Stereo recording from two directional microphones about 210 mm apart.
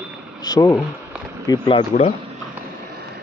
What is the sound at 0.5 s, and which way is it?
Speech, 15° left (ahead or behind).